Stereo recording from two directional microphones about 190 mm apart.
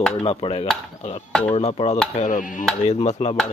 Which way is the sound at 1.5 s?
30° left (ahead or behind).